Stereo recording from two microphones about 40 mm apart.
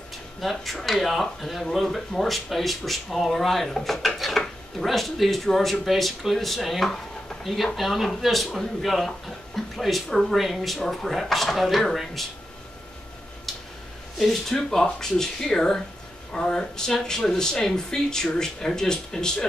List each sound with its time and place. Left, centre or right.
0.4 s speech: centre
10.3 s speech: centre
13.5 s a sound: centre
14.1 s speech: centre
14.5 s speech: centre